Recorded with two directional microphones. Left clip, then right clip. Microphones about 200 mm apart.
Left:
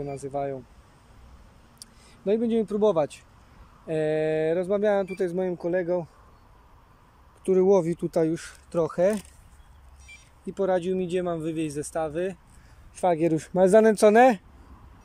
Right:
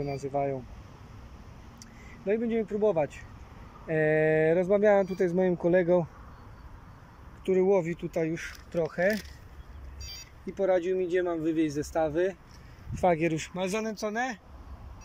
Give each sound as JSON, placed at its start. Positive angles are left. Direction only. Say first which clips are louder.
{"t": 0.3, "sound": "speech", "louder": "even", "side_deg": 5}
{"t": 1.8, "sound": "a sound", "louder": "left 2 dB", "side_deg": 20}
{"t": 3.8, "sound": "speech", "louder": "even", "side_deg": 15}
{"t": 7.4, "sound": "speech", "louder": "left 4 dB", "side_deg": 10}
{"t": 10.5, "sound": "speech", "louder": "left 1 dB", "side_deg": 10}
{"t": 13.0, "sound": "speech", "louder": "left 3 dB", "side_deg": 15}
{"t": 13.6, "sound": "speech", "louder": "left 17 dB", "side_deg": 35}
{"t": 13.8, "sound": "speech", "louder": "left 15 dB", "side_deg": 55}